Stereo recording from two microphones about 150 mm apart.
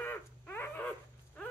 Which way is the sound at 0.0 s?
15° left (ahead or behind).